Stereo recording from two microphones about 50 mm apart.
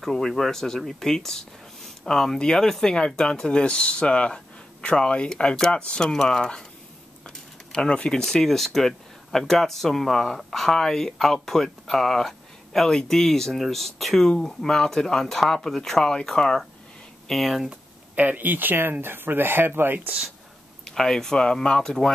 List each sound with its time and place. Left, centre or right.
0.0 s speech: centre
17.3 s speech: centre
18.1 s speech: right
20.8 s speech: centre